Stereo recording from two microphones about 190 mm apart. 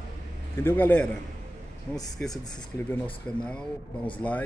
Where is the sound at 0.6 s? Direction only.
10° left (ahead or behind).